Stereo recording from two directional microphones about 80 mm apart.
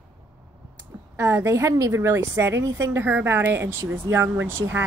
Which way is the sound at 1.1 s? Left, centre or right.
Right.